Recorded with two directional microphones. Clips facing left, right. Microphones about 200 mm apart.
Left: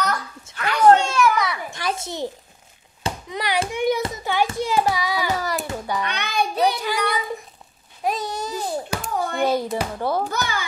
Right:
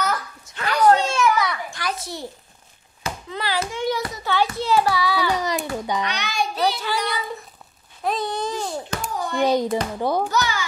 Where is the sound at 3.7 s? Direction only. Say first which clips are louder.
Left 3 dB; 20° left (ahead or behind).